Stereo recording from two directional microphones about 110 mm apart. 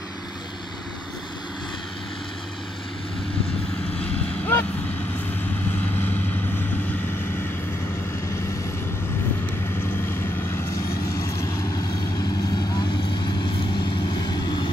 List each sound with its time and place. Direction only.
4.0 s vehicle: 20° left (ahead or behind)
14.1 s vehicle: 40° left (ahead or behind)